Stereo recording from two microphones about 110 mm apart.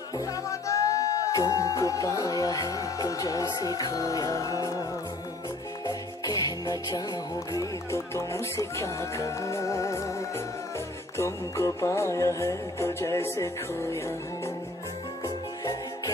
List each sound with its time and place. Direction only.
0.2 s music: 30° left (ahead or behind)
5.9 s music: 35° left (ahead or behind)
15.2 s music: 35° left (ahead or behind)